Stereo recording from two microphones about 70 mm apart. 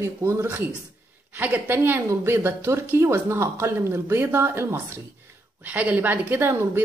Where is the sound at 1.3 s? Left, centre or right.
Right.